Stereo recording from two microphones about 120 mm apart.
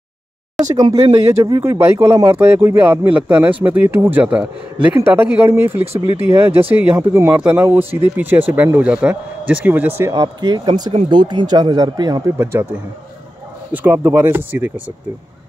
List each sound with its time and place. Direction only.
0.7 s speech: 30° right (ahead or behind)
10.1 s speech: 35° right (ahead or behind)
13.7 s speech: 15° right (ahead or behind)